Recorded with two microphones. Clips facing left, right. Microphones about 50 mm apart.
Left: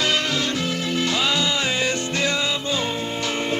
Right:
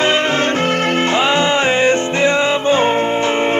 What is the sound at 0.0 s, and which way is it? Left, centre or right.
Music, right.